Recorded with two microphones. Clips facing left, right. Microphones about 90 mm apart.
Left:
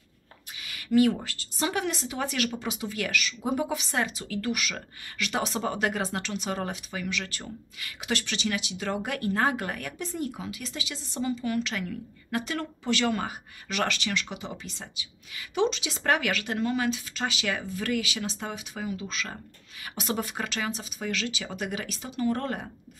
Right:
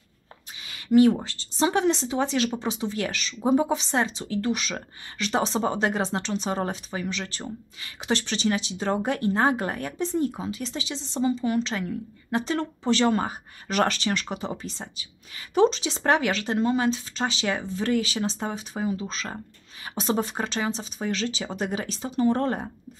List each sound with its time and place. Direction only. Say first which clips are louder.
0.7 s a woman's voice: right 4 dB; 25° right (ahead or behind)